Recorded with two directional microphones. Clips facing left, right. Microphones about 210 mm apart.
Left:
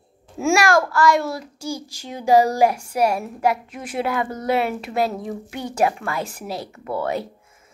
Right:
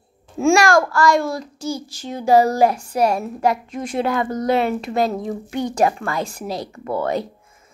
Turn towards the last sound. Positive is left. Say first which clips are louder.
# right 3 dB
turn(degrees=5)  # may be behind; listen again after turning